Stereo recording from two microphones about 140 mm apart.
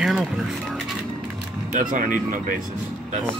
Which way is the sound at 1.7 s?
70° right (ahead or behind).